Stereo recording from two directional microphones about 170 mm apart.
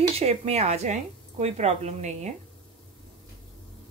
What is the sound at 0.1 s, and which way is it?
A woman's voice, 40° right (ahead or behind).